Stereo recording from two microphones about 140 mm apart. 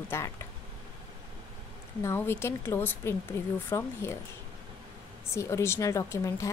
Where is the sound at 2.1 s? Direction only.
15° left (ahead or behind).